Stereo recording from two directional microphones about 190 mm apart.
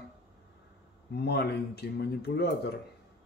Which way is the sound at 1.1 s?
60° left (ahead or behind).